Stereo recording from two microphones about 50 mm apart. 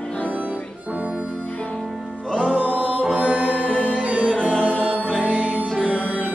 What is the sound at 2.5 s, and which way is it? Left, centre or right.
Music, right.